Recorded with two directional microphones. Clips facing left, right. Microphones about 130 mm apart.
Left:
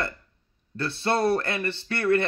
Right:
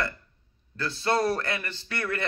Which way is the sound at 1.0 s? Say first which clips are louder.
Left 2 dB; 25° left (ahead or behind).